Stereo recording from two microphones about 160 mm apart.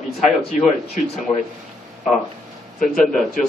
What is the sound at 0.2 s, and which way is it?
Speech, centre (ahead or behind).